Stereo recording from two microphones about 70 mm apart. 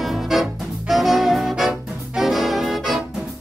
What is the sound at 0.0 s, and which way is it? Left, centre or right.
Music, centre.